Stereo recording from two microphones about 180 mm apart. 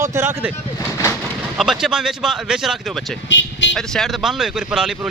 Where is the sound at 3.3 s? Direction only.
90° left.